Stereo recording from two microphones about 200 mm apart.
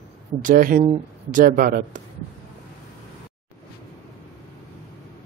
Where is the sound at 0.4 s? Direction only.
45° right (ahead or behind).